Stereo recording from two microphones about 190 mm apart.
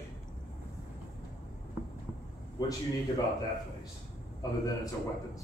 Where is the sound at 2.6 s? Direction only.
20° left (ahead or behind).